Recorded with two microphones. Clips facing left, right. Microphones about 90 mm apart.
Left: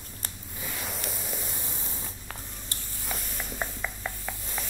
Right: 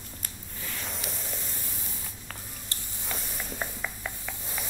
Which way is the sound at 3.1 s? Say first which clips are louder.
Even; 5° left (ahead or behind).